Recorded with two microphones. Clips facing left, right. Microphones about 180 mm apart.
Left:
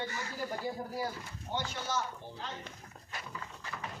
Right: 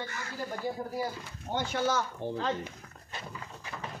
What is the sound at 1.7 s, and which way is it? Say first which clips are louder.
Speech: right 7 dB; 80° right.